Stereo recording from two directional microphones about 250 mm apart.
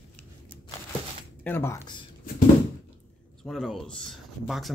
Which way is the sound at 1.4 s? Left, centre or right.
Centre.